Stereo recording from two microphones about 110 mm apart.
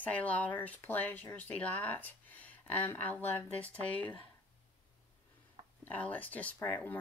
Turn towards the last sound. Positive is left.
turn(degrees=15)  # may be behind; listen again after turning